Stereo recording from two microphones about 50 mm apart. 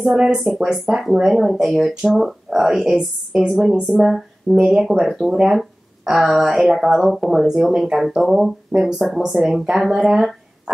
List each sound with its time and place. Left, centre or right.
0.1 s speech: centre